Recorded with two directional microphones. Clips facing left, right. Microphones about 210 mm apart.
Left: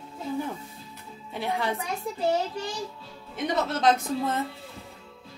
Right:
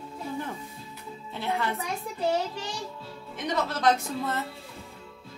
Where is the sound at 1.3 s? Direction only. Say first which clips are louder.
Left 1 dB; 15° left (ahead or behind).